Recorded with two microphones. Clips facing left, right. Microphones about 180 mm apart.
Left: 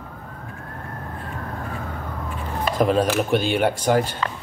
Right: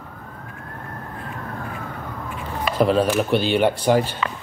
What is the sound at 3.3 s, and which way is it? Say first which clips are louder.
Speech: right 1 dB; 45° left (ahead or behind).